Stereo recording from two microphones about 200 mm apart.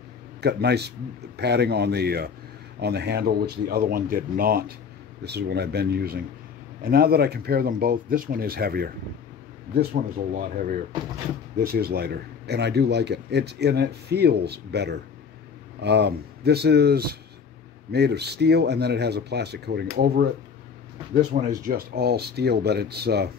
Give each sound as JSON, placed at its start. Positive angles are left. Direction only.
{"t": 0.4, "sound": "speech", "side_deg": -55}
{"t": 10.3, "sound": "speech", "side_deg": -45}